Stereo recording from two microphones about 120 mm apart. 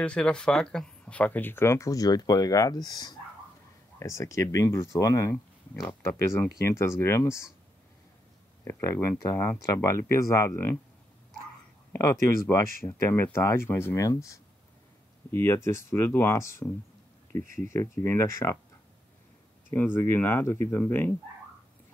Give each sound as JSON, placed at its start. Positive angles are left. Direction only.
{"t": 0.0, "sound": "speech", "side_deg": 10}
{"t": 8.6, "sound": "speech", "side_deg": 25}
{"t": 11.9, "sound": "speech", "side_deg": 25}
{"t": 19.7, "sound": "speech", "side_deg": 20}